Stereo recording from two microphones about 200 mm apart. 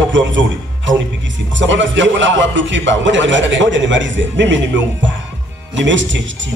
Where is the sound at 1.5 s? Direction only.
65° right (ahead or behind).